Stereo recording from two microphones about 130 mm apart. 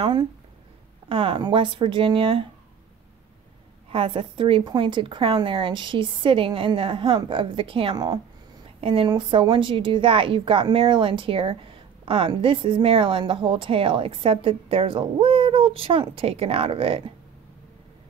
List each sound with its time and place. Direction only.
0.0 s a woman's voice: 35° right (ahead or behind)
3.9 s a woman's voice: 40° right (ahead or behind)